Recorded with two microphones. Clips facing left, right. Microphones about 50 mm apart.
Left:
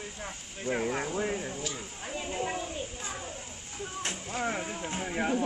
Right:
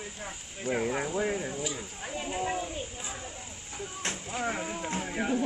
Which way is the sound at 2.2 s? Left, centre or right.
Centre.